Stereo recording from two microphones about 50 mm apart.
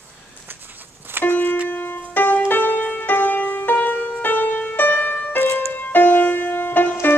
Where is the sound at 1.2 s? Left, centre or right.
Left.